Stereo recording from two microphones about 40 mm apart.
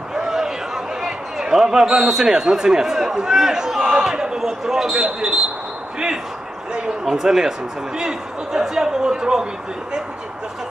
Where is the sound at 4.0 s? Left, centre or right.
Centre.